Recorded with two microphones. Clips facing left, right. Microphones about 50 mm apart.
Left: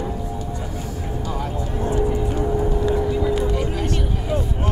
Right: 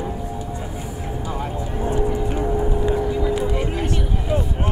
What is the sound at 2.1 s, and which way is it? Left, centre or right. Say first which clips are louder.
Music: even; centre.